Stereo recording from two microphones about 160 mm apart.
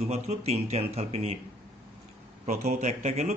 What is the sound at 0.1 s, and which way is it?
Speech, 40° right (ahead or behind).